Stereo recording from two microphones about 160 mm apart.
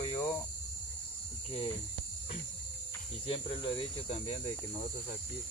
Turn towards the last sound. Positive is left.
turn(degrees=35)  # may be behind; listen again after turning